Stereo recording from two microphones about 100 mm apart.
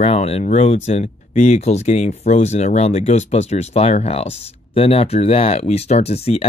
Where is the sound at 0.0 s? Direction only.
90° left.